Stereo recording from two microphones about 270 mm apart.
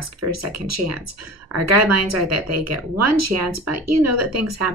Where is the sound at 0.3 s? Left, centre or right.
Right.